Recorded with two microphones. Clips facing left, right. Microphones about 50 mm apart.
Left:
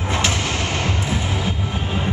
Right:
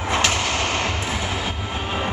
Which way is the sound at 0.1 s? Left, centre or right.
Right.